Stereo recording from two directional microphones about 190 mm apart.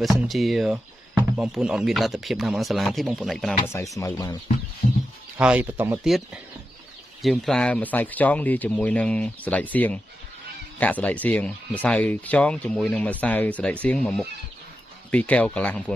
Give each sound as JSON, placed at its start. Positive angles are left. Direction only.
{"t": 0.3, "sound": "speech", "side_deg": 0}
{"t": 3.9, "sound": "speech", "side_deg": 20}
{"t": 5.4, "sound": "speech", "side_deg": -5}